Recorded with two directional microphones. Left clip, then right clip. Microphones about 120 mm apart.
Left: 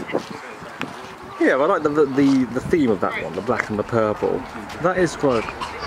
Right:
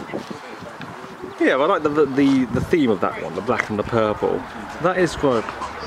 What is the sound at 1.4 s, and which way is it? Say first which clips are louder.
Speech: even; 5° right (ahead or behind).